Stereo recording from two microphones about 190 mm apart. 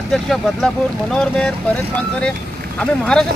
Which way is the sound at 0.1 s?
5° left (ahead or behind).